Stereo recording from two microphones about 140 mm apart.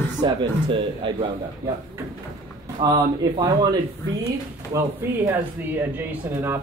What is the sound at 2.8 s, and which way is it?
Speech, 35° right (ahead or behind).